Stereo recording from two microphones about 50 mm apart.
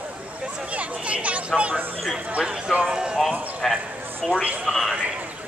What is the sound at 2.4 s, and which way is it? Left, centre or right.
Speech, centre.